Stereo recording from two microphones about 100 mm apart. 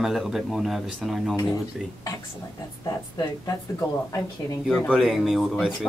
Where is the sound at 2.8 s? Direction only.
40° left (ahead or behind).